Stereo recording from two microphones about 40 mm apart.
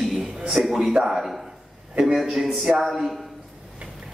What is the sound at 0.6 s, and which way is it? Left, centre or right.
A man's voice, right.